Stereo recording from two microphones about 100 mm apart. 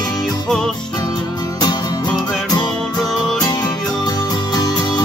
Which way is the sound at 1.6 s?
45° left (ahead or behind).